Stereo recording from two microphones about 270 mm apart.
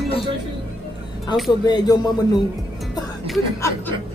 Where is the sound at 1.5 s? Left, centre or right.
Centre.